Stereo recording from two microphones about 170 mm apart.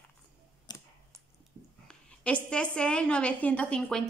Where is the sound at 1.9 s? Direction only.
5° left (ahead or behind).